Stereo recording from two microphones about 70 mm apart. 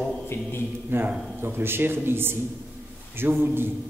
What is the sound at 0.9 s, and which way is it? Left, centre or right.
A man's voice, right.